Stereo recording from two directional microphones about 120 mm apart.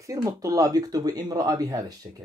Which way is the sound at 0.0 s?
30° right (ahead or behind).